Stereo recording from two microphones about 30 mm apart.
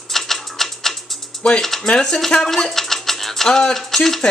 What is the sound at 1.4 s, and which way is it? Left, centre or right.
Speech, left.